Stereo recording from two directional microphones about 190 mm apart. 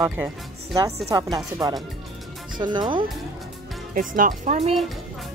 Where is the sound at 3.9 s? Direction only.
45° right (ahead or behind).